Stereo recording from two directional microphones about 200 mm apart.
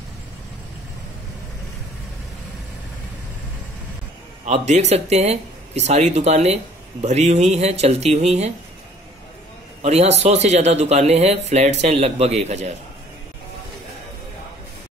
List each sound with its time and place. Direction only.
4.5 s speech: 35° right (ahead or behind)
9.8 s speech: 30° right (ahead or behind)